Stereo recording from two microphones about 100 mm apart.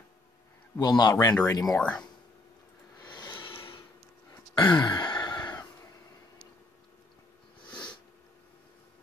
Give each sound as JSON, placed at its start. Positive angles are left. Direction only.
{"t": 0.7, "sound": "a man's voice", "side_deg": 40}
{"t": 1.7, "sound": "speech", "side_deg": 10}
{"t": 3.3, "sound": "a sound", "side_deg": 55}
{"t": 4.6, "sound": "sigh", "side_deg": 45}